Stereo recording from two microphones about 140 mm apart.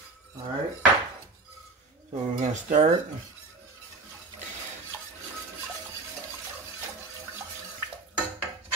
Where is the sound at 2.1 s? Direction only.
55° right (ahead or behind).